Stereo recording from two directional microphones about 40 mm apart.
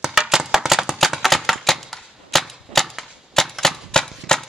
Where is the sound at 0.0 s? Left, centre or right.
Centre.